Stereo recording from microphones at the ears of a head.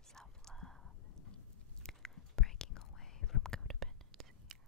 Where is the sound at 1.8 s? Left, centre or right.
Centre.